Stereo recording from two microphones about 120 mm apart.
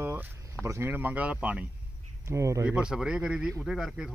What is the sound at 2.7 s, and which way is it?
A man's voice, 5° right (ahead or behind).